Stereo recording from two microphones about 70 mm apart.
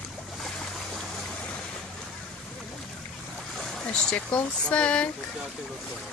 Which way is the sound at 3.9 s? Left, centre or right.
Centre.